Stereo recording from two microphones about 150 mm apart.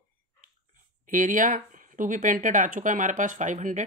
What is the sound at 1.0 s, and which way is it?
Speech, 65° right (ahead or behind).